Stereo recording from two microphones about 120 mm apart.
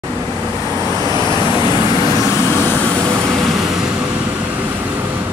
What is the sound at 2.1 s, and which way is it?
Vehicle, 25° right (ahead or behind).